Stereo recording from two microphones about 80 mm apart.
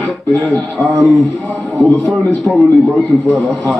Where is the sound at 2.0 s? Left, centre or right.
Centre.